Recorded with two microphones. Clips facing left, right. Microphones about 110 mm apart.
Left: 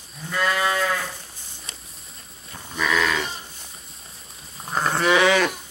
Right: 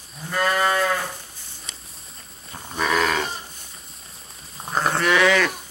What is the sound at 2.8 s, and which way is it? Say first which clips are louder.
Goat: right 1 dB; 45° right (ahead or behind).